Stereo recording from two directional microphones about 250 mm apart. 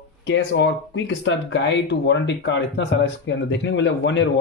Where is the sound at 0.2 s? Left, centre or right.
Left.